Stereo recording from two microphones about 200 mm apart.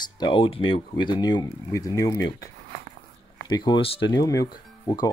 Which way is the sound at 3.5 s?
20° left (ahead or behind).